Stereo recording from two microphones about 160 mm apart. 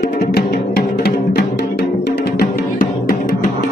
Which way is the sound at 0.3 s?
80° left.